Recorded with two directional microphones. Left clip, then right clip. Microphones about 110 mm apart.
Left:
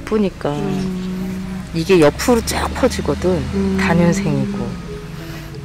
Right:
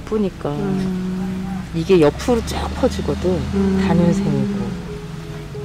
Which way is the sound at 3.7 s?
40° left (ahead or behind).